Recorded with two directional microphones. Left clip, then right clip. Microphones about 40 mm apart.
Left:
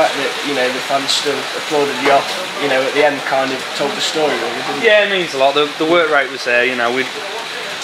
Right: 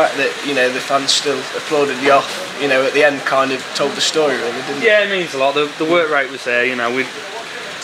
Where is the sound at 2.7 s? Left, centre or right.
Right.